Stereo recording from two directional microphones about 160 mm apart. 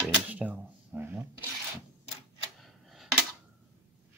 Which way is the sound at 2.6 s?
Centre (ahead or behind).